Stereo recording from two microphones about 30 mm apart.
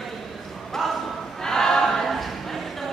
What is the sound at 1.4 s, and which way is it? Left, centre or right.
Choir, centre.